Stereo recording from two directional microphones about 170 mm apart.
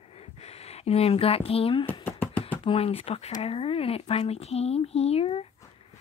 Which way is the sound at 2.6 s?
35° left (ahead or behind).